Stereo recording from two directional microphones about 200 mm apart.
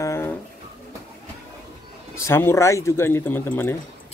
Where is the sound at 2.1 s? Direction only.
15° left (ahead or behind).